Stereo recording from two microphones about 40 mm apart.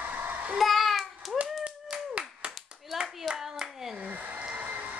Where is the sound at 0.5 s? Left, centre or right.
Centre.